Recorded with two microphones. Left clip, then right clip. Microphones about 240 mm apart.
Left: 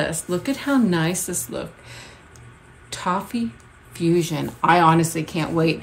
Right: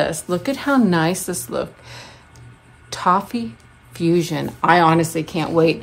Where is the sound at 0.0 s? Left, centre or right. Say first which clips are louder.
Right 4 dB; centre.